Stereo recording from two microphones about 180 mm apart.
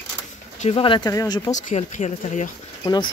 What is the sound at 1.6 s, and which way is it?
Speech, 40° left (ahead or behind).